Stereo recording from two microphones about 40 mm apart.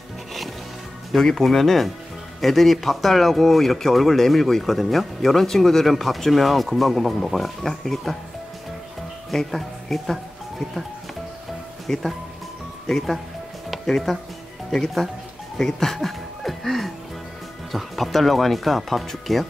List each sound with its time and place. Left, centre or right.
1.1 s speech: centre
9.3 s speech: centre
11.9 s speech: centre
13.7 s music: centre
14.7 s speech: centre
15.5 s music: centre
17.6 s speech: centre